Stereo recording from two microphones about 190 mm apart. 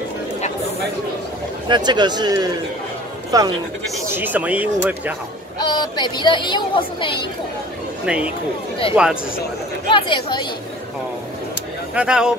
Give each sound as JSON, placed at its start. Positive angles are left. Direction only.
{"t": 1.7, "sound": "speech", "side_deg": -25}
{"t": 5.6, "sound": "speech", "side_deg": 20}
{"t": 8.1, "sound": "speech", "side_deg": -5}
{"t": 9.8, "sound": "speech", "side_deg": 25}
{"t": 11.9, "sound": "speech", "side_deg": -5}